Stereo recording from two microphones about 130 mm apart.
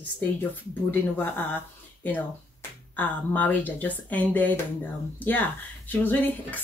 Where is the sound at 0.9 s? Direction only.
15° left (ahead or behind).